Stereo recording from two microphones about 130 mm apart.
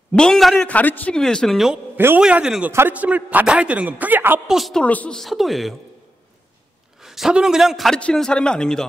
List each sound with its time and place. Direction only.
0.1 s a man's voice: 5° left (ahead or behind)
0.7 s a man's voice: 10° left (ahead or behind)
2.0 s a man's voice: 15° right (ahead or behind)
4.5 s a man's voice: centre (ahead or behind)
4.8 s a man's voice: 10° left (ahead or behind)
7.0 s a man's voice: 5° right (ahead or behind)